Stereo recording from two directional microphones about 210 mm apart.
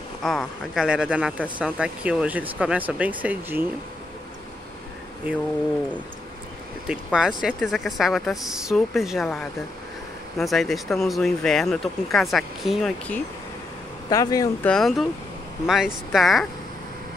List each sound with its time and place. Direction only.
0.2 s speech: 5° left (ahead or behind)
6.9 s speech: 5° right (ahead or behind)
14.0 s speech: 15° left (ahead or behind)
14.7 s speech: centre (ahead or behind)